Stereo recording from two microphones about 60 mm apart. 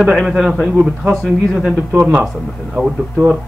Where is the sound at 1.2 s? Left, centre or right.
Centre.